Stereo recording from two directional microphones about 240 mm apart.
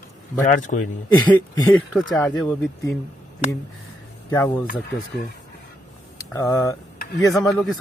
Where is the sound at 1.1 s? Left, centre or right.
Centre.